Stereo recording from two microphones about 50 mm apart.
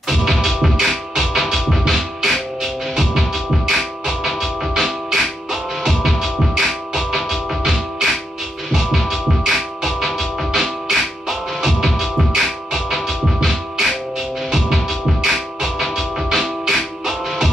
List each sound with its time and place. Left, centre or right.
0.1 s music: centre